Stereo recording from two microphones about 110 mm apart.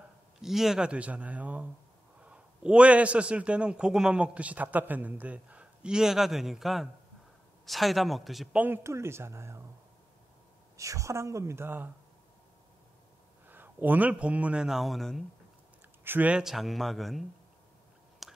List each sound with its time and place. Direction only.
0.4 s a man's voice: 5° right (ahead or behind)
8.5 s speech: 20° right (ahead or behind)
10.8 s speech: 30° right (ahead or behind)
13.5 s a man's voice: 15° right (ahead or behind); by 15.2 s centre (ahead or behind)
16.0 s a man's voice: 15° right (ahead or behind); by 17.3 s centre (ahead or behind)
18.2 s whispering: centre (ahead or behind)